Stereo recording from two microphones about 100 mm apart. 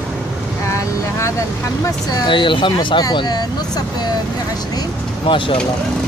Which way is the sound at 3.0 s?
45° left (ahead or behind).